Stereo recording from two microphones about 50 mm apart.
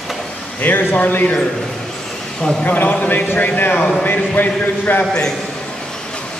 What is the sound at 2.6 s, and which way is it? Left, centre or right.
A man's voice, left.